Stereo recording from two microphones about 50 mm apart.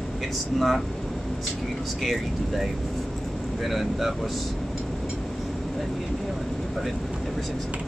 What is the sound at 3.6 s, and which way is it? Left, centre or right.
Speech, centre.